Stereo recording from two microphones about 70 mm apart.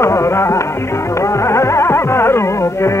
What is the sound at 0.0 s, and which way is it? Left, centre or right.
Music, left.